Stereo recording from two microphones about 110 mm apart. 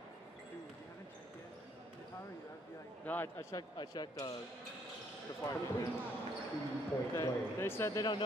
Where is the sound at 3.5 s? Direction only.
40° left (ahead or behind).